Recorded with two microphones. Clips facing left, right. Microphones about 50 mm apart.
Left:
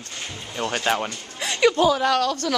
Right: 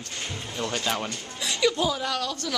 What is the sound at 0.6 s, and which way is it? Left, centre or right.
Speech, left.